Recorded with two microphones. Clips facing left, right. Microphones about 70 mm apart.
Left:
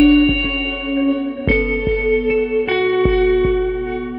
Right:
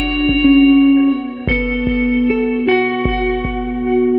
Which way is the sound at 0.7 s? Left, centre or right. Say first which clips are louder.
Right 8 dB; right.